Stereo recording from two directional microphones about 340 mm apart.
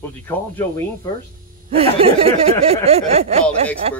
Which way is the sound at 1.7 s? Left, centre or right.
Centre.